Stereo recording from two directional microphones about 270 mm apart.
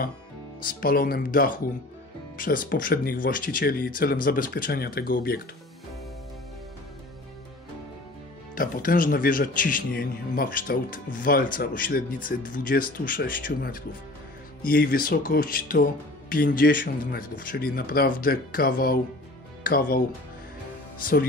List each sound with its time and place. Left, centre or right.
0.6 s speech: left
8.5 s speech: left
21.0 s speech: left